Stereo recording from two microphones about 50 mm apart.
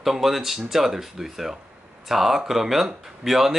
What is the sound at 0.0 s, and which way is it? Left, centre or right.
Speech, centre.